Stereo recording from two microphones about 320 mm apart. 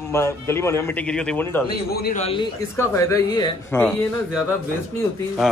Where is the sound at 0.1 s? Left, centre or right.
Centre.